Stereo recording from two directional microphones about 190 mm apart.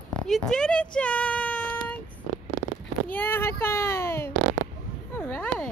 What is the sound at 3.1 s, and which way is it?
A child's voice, 10° left (ahead or behind).